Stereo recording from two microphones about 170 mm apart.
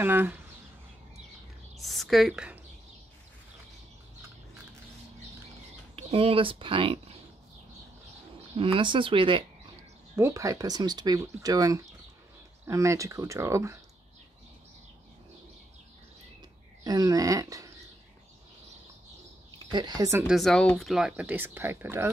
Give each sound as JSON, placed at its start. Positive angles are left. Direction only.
{"t": 0.0, "sound": "speech", "side_deg": -10}
{"t": 1.8, "sound": "a woman's voice", "side_deg": 0}
{"t": 5.9, "sound": "speech", "side_deg": -35}
{"t": 8.5, "sound": "speech", "side_deg": -30}
{"t": 10.1, "sound": "speech", "side_deg": -15}
{"t": 16.8, "sound": "speech", "side_deg": -20}
{"t": 19.7, "sound": "speech", "side_deg": -25}
{"t": 20.2, "sound": "speech", "side_deg": 0}